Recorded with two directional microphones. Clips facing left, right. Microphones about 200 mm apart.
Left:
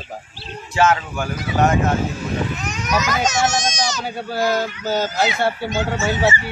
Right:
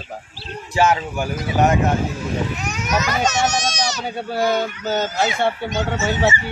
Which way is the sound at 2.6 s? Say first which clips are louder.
Even; 5° right (ahead or behind).